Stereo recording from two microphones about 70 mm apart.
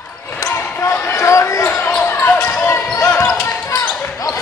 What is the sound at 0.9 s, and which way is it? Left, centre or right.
Basketball bounce, left.